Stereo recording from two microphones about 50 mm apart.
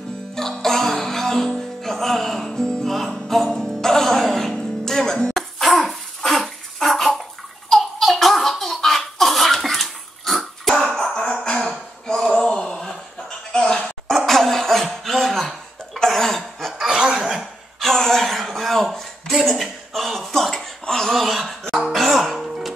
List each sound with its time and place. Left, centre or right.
0.4 s music: centre
5.6 s bathtub: centre
7.7 s laughter: centre
12.1 s a sound: centre
14.1 s cough: centre
16.8 s chuckle: centre
17.7 s a sound: centre
21.7 s music: centre